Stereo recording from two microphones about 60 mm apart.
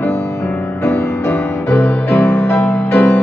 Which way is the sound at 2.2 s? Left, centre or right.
Left.